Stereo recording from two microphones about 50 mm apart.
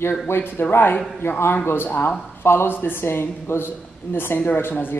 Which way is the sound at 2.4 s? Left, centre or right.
Left.